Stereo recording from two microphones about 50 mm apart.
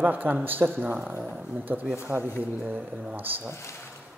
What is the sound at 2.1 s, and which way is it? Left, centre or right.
Speech, centre.